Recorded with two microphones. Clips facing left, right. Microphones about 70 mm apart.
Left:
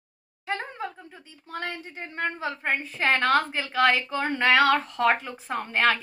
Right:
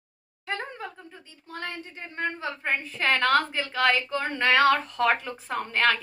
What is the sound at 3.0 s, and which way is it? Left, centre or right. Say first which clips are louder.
A woman's voice: even; left.